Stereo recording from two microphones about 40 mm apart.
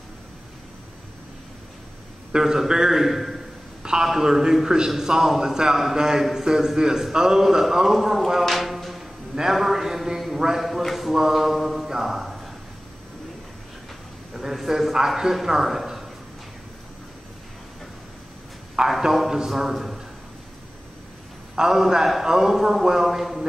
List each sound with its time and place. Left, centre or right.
2.3 s a man's voice: centre
3.8 s a sound: centre
4.1 s a man's voice: centre
8.5 s music: centre
9.3 s a man's voice: centre
14.3 s speech: centre
18.9 s a man's voice: centre
21.5 s a man's voice: centre